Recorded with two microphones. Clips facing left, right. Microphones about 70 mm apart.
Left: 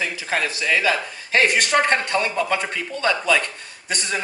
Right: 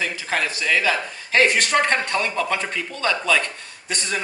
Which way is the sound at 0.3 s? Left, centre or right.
Centre.